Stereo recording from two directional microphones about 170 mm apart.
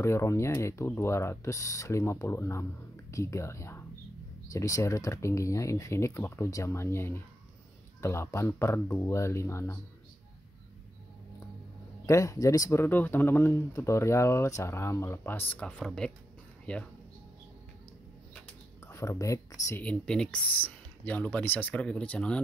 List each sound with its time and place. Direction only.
0.0 s speech: 15° left (ahead or behind)
12.1 s speech: 20° left (ahead or behind)
18.9 s speech: 20° left (ahead or behind)